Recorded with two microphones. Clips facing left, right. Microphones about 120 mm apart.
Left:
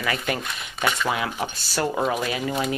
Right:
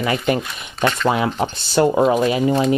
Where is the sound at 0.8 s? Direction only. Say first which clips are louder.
Right 6 dB; 5° left (ahead or behind).